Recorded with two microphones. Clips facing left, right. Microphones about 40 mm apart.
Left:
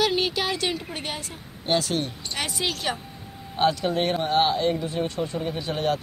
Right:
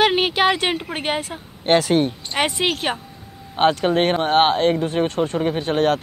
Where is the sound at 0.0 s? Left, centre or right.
Right.